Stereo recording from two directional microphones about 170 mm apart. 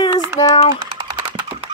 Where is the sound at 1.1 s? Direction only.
30° right (ahead or behind).